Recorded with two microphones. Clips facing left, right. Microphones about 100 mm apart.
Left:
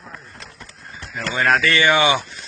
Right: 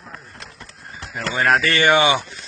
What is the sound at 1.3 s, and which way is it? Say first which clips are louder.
Speech: even; 5° right (ahead or behind).